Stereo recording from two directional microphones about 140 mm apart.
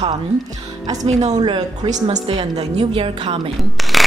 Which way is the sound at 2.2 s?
40° right (ahead or behind).